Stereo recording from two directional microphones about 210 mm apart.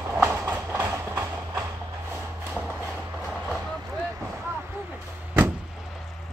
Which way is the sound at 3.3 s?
Centre (ahead or behind).